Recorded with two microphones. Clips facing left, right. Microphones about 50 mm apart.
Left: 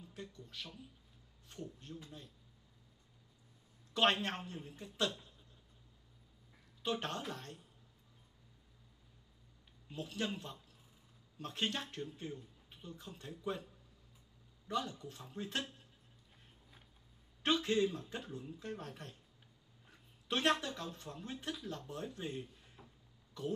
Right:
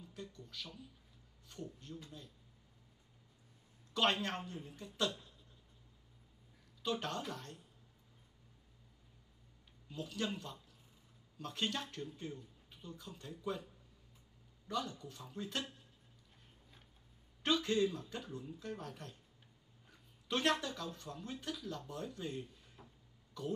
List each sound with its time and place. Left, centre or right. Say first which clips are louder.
0.0 s a sound: even; left
1.5 s speech: even; left
3.9 s speech: left 2 dB; left
6.8 s speech: even; left
9.8 s speech: even; left
14.7 s speech: left 1 dB; left
17.4 s speech: left 1 dB; left
19.9 s a sound: even; left
20.6 s speech: even; left
22.8 s a sound: even; centre